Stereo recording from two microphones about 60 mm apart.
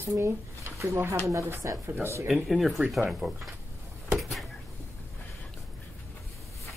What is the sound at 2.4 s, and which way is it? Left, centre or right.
Speech, centre.